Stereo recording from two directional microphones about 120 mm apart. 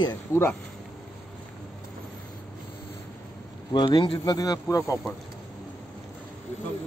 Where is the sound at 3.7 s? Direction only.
40° left (ahead or behind).